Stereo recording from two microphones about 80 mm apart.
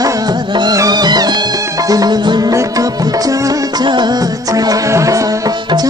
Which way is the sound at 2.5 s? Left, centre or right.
Right.